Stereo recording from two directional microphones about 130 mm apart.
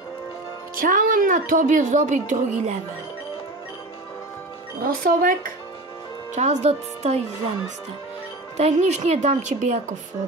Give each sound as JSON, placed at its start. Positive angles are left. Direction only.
{"t": 0.7, "sound": "a woman's voice", "side_deg": -90}
{"t": 4.8, "sound": "a woman's voice", "side_deg": -90}
{"t": 6.3, "sound": "a woman's voice", "side_deg": -65}
{"t": 8.5, "sound": "a woman's voice", "side_deg": -60}